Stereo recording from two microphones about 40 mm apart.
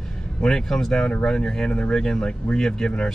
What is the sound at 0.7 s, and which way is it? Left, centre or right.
Speech, centre.